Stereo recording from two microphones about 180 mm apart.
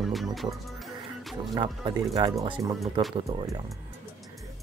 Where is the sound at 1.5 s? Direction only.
25° right (ahead or behind).